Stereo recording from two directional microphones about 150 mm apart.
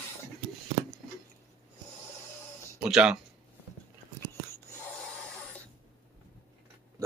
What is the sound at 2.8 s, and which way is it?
Speech, 5° right (ahead or behind).